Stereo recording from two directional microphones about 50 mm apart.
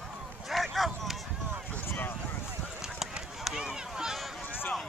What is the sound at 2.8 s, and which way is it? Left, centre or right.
Clip-clop, centre.